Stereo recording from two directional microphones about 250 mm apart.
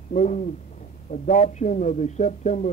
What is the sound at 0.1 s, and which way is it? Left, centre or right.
Speech, left.